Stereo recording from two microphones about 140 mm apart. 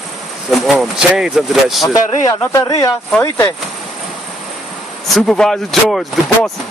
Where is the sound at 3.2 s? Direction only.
15° left (ahead or behind).